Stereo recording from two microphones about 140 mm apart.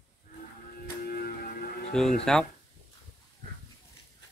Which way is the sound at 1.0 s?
90° left.